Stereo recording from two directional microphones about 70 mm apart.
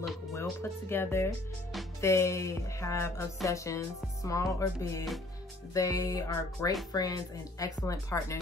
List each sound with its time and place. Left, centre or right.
0.6 s speech: left